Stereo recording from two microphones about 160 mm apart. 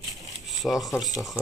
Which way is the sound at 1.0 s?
Centre (ahead or behind).